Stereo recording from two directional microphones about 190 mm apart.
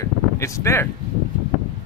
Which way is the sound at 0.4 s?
15° left (ahead or behind).